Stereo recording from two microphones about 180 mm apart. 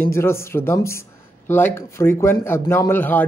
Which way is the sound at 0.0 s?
15° left (ahead or behind).